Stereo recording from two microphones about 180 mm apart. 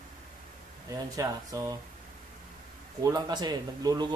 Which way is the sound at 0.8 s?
20° right (ahead or behind).